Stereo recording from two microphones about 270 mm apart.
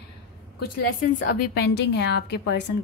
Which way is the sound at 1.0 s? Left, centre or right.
Left.